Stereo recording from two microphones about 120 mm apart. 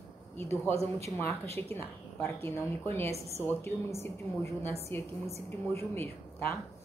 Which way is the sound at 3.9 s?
20° left (ahead or behind).